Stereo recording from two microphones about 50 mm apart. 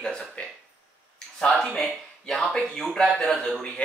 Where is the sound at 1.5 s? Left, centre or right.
Centre.